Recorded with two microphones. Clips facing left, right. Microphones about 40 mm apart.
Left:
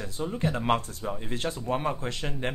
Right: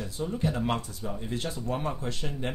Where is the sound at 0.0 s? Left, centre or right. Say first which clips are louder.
Left 1 dB; left.